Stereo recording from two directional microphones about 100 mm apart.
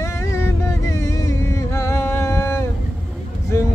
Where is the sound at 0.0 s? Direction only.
30° left (ahead or behind).